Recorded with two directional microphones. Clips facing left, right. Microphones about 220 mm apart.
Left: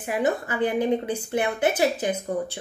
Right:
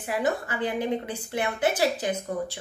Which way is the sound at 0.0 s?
20° left (ahead or behind).